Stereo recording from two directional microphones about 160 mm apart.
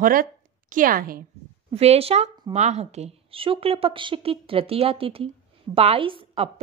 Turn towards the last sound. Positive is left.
turn(degrees=-35)  # may be behind; listen again after turning